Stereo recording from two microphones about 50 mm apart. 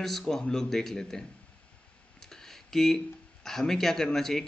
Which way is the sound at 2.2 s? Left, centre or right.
Centre.